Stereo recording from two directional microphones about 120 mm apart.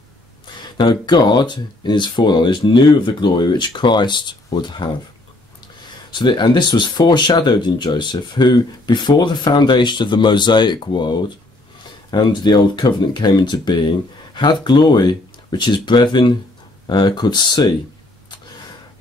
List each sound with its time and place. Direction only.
0.6 s speech: 40° left (ahead or behind)
6.1 s speech: 40° left (ahead or behind)